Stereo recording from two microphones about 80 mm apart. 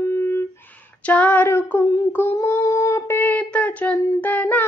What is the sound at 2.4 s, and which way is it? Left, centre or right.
Female singing, left.